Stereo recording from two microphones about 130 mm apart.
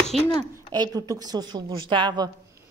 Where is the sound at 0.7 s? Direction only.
30° right (ahead or behind).